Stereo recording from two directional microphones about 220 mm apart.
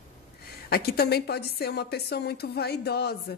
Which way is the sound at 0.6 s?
45° left (ahead or behind).